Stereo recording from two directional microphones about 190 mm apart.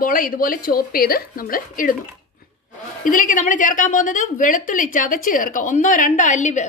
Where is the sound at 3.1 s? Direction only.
45° left (ahead or behind).